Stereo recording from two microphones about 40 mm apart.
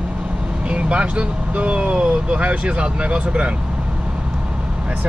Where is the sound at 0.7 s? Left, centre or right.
Right.